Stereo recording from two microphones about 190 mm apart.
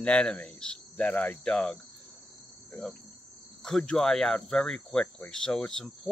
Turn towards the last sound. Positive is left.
turn(degrees=5)  # may be behind; listen again after turning